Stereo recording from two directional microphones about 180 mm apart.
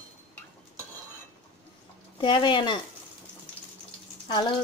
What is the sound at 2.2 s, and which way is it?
Speech, 25° left (ahead or behind).